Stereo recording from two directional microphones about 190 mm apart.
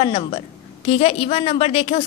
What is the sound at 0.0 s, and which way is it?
A woman's voice, 30° left (ahead or behind).